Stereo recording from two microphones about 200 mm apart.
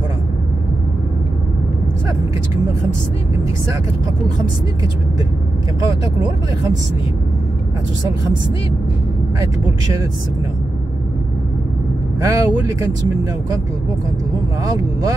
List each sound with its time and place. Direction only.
12.2 s speech: 15° right (ahead or behind)